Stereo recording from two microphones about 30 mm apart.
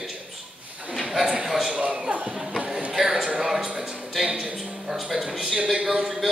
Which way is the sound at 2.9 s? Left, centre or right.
Centre.